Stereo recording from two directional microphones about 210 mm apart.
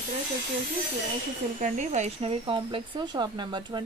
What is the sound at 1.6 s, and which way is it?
Speech, 35° right (ahead or behind).